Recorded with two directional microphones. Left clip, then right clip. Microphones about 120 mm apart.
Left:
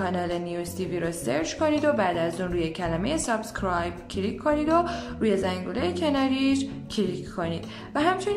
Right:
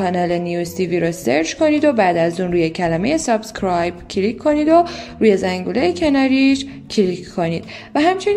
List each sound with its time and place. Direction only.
0.0 s a woman's voice: 35° right (ahead or behind)